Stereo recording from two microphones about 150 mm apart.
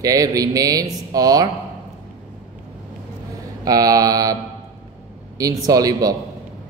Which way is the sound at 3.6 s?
25° right (ahead or behind).